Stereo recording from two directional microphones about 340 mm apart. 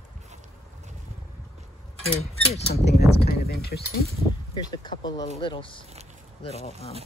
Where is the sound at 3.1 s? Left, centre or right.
Left.